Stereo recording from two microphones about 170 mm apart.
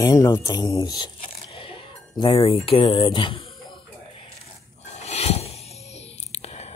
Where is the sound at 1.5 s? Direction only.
30° left (ahead or behind).